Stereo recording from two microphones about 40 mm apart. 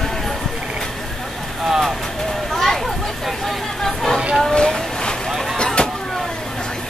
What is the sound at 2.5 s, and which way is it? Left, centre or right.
Children playing, centre.